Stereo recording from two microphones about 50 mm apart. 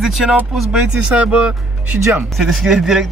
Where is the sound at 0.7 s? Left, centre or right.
Right.